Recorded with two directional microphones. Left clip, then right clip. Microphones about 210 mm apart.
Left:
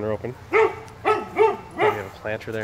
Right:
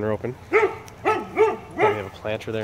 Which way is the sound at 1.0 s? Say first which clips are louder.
Left 1 dB; 50° right (ahead or behind).